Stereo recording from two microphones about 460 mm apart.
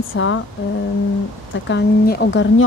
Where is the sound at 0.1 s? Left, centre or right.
Left.